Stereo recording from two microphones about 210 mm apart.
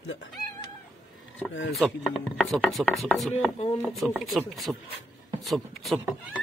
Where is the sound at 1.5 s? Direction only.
65° left (ahead or behind).